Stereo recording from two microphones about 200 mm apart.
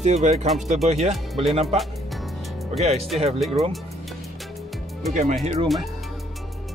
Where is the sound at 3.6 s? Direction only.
Centre (ahead or behind).